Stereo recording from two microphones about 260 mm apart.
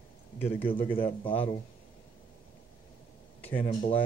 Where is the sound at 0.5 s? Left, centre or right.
Centre.